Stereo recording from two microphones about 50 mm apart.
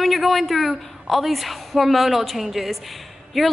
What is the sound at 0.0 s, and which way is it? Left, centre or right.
A woman's voice, centre.